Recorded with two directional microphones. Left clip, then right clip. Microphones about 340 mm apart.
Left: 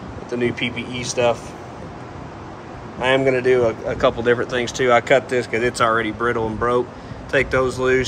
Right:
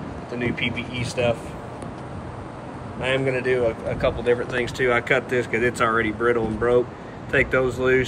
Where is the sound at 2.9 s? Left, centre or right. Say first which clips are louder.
Left 6 dB; centre.